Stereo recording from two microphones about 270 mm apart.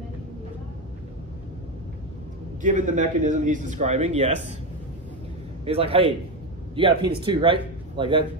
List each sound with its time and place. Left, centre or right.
2.6 s a man's voice: right
5.7 s a man's voice: right